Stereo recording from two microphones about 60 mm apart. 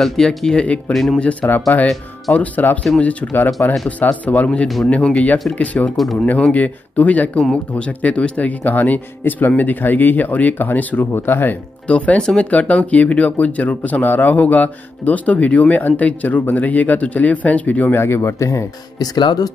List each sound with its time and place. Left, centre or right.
0.0 s speech: centre
0.6 s speech: left
0.9 s speech: centre
1.4 s speech: centre
4.8 s speech: centre
5.5 s speech: left
12.2 s speech: centre
12.4 s speech: left
17.9 s speech: left
18.9 s speech: left